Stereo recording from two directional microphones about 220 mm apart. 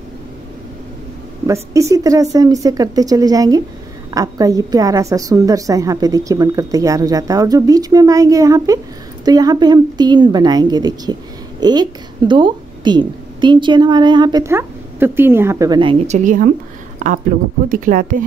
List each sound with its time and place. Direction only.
1.5 s a woman's voice: 15° right (ahead or behind); by 18.2 s 40° right (ahead or behind)